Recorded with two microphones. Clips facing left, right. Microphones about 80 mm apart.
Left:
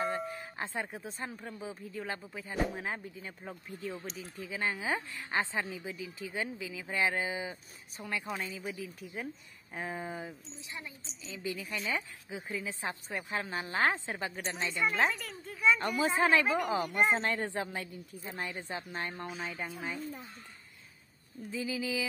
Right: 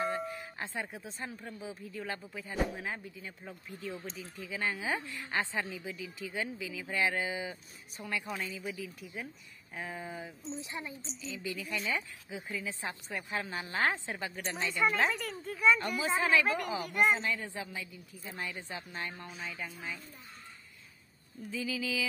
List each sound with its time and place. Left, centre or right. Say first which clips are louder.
0.0 s doorbell: even; centre
0.3 s doorbell: left 1 dB; left
1.4 s speech: left 1 dB; left
10.6 s speech: even; right
11.2 s speech: left 1 dB; left
15.0 s a child's voice: right 1 dB; centre
15.8 s speech: left 3 dB; left
16.8 s speech: even; left
17.2 s a woman's voice: left 3 dB; left
17.5 s a woman's voice: left 5 dB; left
18.2 s speech: left 1 dB; left
21.5 s speech: left 1 dB; left